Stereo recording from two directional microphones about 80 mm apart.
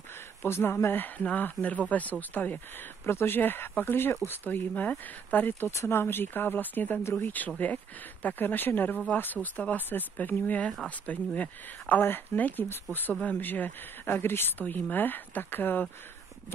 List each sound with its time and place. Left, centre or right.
0.4 s speech: left